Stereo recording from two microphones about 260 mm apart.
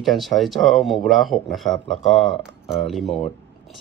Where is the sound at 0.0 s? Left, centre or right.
Centre.